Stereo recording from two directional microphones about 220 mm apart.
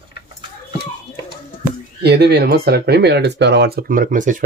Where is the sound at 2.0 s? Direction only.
50° right (ahead or behind).